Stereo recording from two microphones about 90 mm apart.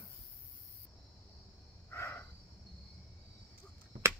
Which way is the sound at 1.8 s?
25° left (ahead or behind).